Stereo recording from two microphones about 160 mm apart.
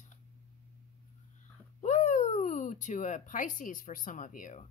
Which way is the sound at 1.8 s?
45° left (ahead or behind).